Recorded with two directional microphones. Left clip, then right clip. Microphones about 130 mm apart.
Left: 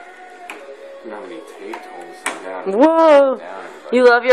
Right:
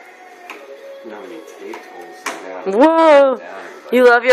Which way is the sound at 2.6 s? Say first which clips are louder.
Right 1 dB; 5° right (ahead or behind).